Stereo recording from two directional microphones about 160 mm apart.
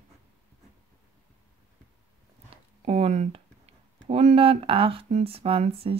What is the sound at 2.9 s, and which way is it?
Speech, 40° right (ahead or behind).